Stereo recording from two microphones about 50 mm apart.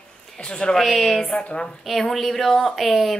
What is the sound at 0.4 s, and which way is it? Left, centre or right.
Speech, centre.